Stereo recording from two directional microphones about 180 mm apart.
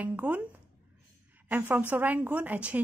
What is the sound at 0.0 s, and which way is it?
Speech, 10° right (ahead or behind).